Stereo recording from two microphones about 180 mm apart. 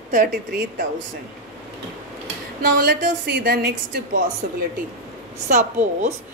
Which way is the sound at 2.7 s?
55° right (ahead or behind).